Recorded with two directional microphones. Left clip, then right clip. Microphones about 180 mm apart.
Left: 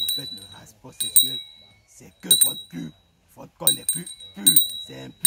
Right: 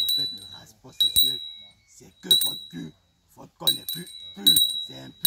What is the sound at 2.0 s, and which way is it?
Wind chime, 35° left (ahead or behind).